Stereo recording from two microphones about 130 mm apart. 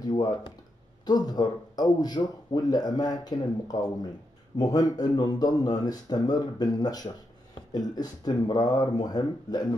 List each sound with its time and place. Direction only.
0.0 s speech: 35° left (ahead or behind)